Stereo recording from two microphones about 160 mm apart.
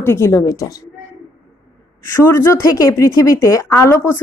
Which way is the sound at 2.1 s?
15° left (ahead or behind).